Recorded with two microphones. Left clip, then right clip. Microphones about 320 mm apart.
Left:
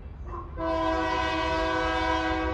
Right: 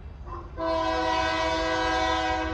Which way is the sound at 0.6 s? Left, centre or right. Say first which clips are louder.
Right 1 dB; right.